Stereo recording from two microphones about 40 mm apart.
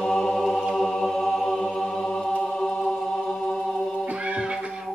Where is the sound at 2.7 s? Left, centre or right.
Centre.